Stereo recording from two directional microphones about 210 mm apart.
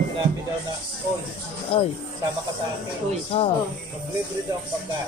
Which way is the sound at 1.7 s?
30° left (ahead or behind).